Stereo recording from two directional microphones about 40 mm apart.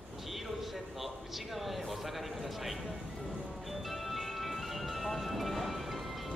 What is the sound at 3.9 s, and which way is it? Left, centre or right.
Music, centre.